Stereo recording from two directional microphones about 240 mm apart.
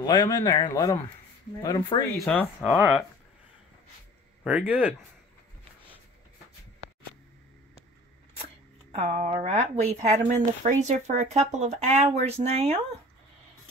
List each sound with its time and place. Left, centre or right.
0.0 s speech: centre
2.1 s speech: centre
4.5 s speech: centre
8.9 s speech: right